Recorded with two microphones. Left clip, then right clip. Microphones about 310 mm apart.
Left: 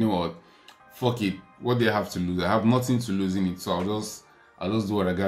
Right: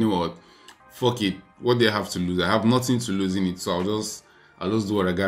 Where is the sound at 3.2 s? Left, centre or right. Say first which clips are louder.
Right 2 dB; left.